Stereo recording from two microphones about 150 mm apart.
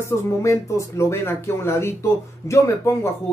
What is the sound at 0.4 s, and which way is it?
Speech, 20° left (ahead or behind).